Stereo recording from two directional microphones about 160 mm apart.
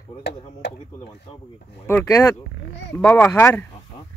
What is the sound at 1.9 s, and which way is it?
Speech, 15° left (ahead or behind).